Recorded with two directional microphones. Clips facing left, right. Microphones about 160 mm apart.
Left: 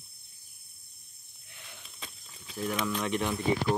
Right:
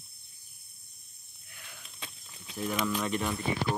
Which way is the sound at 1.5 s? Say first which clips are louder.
Even; 25° left (ahead or behind).